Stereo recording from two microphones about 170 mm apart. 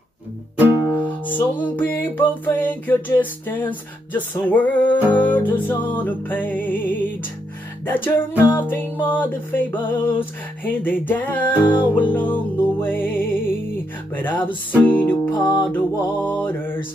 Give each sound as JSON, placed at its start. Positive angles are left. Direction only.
{"t": 1.0, "sound": "music", "side_deg": 10}